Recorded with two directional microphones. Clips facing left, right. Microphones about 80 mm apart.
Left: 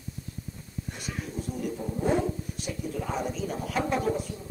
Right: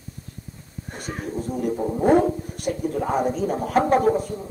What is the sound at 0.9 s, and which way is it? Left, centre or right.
Speech, right.